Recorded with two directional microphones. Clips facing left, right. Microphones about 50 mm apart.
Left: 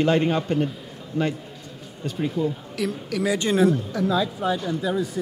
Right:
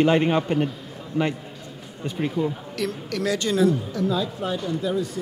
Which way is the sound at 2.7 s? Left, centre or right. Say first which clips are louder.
Left 1 dB; centre.